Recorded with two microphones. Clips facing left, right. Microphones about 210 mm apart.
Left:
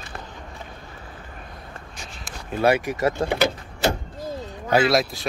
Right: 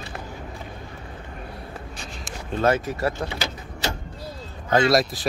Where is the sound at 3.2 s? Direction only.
55° left (ahead or behind).